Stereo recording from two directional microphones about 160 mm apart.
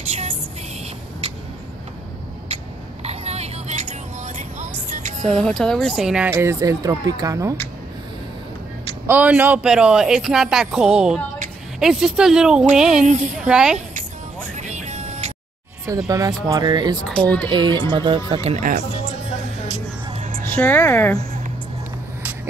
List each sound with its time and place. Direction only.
2.4 s a sound: 40° right (ahead or behind)
4.4 s music: 50° right (ahead or behind)
5.2 s speech: 5° left (ahead or behind)
6.3 s speech: 20° right (ahead or behind)
9.0 s speech: 10° right (ahead or behind)
13.0 s speech: 50° right (ahead or behind)
13.5 s speech: 5° right (ahead or behind)
14.6 s music: 50° right (ahead or behind)
16.1 s speech: 20° right (ahead or behind)
17.0 s a child's voice: 5° left (ahead or behind)
17.5 s speech: 30° right (ahead or behind)
20.2 s a sound: 60° right (ahead or behind)
20.4 s speech: 10° left (ahead or behind)